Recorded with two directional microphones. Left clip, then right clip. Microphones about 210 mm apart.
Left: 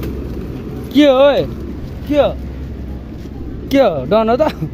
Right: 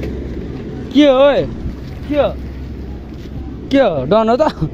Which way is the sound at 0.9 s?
5° right (ahead or behind).